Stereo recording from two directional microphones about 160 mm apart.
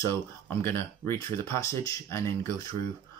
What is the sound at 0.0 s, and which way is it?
Speech, 15° left (ahead or behind).